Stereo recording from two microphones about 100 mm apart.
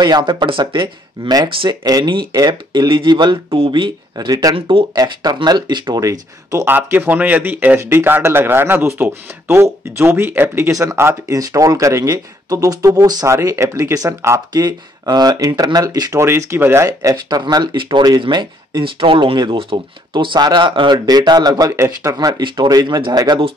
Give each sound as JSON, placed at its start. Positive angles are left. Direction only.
{"t": 0.0, "sound": "speech", "side_deg": -50}
{"t": 1.9, "sound": "speech", "side_deg": -45}
{"t": 3.4, "sound": "speech", "side_deg": -60}
{"t": 4.3, "sound": "speech", "side_deg": -40}
{"t": 4.6, "sound": "speech", "side_deg": -65}
{"t": 4.9, "sound": "speech", "side_deg": -40}
{"t": 6.0, "sound": "speech", "side_deg": -30}
{"t": 6.7, "sound": "speech", "side_deg": -20}
{"t": 17.4, "sound": "speech", "side_deg": -50}
{"t": 22.4, "sound": "speech", "side_deg": -45}